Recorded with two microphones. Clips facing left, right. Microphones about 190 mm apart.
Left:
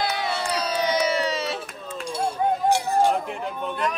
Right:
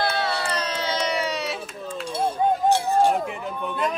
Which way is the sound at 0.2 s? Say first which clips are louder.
Even; 15° left (ahead or behind).